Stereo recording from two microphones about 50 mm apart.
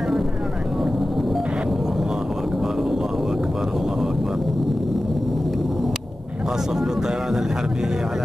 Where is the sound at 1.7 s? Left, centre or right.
Centre.